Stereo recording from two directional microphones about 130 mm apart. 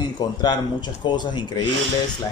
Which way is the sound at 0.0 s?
35° left (ahead or behind).